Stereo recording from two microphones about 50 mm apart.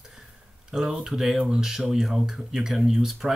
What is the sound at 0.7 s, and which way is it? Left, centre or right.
Speech, centre.